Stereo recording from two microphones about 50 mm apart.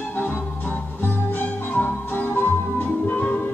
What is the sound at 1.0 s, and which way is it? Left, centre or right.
Music, left.